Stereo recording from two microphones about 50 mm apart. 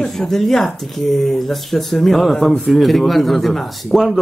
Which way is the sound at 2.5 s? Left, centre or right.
Centre.